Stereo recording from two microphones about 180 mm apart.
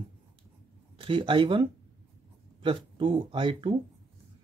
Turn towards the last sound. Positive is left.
turn(degrees=-30)  # may be behind; listen again after turning